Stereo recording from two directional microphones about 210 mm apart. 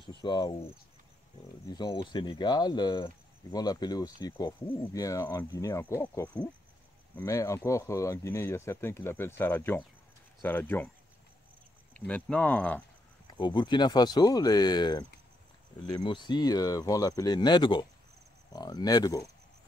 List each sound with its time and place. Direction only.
0.0 s speech: 20° left (ahead or behind)
1.7 s speech: 20° left (ahead or behind)
12.1 s speech: 5° left (ahead or behind)
13.3 s speech: 20° left (ahead or behind)